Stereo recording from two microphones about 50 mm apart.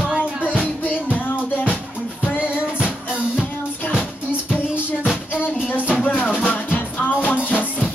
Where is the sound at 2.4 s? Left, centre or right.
Right.